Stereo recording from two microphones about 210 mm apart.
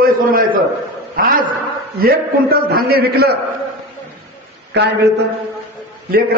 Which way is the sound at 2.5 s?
45° right (ahead or behind).